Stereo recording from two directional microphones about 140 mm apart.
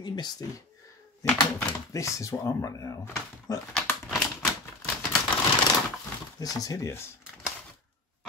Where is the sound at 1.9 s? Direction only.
20° left (ahead or behind).